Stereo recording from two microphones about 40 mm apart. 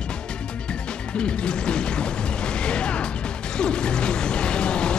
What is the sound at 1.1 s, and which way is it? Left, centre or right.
Music, left.